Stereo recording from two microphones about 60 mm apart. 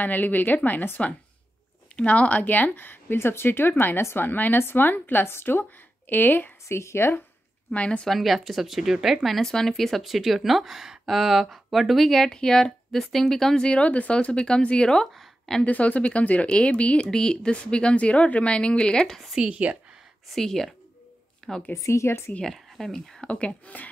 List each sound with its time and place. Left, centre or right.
0.0 s speech: left
6.7 s speech: left
7.7 s speech: left
8.1 s speech: centre
15.1 s a sound: centre
15.6 s speech: left
19.3 s speech: centre
20.3 s a woman's voice: centre
21.7 s speech: left
22.4 s speech: centre
23.2 s speech: centre